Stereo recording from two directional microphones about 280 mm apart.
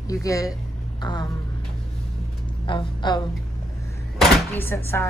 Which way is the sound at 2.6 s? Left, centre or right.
Centre.